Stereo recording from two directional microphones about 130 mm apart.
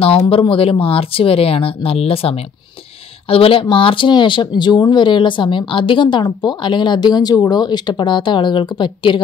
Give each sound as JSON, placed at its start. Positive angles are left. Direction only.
{"t": 0.0, "sound": "speech", "side_deg": 45}